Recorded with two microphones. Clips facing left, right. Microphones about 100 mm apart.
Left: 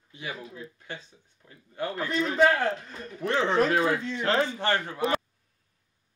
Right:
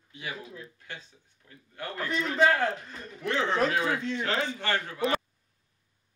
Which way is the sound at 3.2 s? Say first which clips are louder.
Left 3 dB; 30° left (ahead or behind).